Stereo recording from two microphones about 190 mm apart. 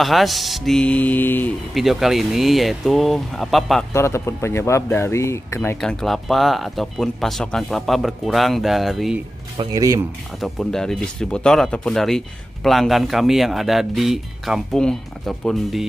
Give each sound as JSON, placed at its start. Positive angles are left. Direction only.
{"t": 0.0, "sound": "speech", "side_deg": 0}
{"t": 3.9, "sound": "speech", "side_deg": 15}
{"t": 5.8, "sound": "speech", "side_deg": 0}
{"t": 9.6, "sound": "speech", "side_deg": -20}
{"t": 10.4, "sound": "speech", "side_deg": 0}